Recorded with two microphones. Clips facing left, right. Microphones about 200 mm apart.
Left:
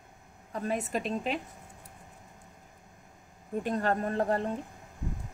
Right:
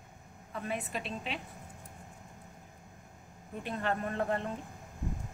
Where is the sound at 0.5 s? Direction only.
40° left (ahead or behind).